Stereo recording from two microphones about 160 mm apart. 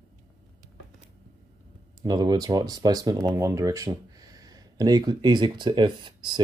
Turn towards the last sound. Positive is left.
turn(degrees=-30)  # may be behind; listen again after turning